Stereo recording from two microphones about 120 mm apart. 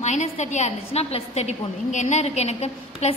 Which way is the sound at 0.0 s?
75° left (ahead or behind).